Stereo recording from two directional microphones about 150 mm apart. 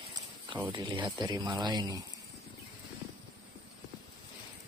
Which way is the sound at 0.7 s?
30° right (ahead or behind).